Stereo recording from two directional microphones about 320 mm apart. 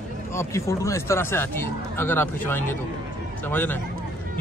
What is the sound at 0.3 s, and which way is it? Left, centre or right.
Speech, centre.